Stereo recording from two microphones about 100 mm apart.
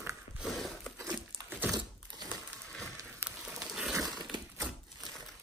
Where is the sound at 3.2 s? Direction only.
25° right (ahead or behind).